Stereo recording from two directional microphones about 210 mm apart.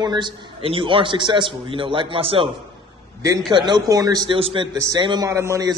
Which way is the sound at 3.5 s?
20° right (ahead or behind).